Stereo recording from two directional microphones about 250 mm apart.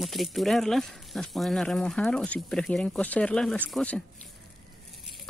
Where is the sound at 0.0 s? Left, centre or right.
Centre.